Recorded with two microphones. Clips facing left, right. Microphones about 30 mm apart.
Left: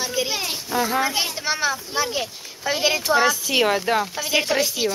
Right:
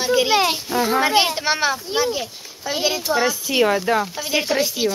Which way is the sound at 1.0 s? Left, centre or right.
Right.